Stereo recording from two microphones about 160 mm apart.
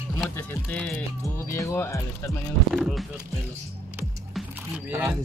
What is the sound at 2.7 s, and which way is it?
Speech, centre (ahead or behind).